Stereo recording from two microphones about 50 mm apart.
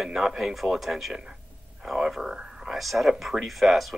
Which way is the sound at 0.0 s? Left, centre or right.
Centre.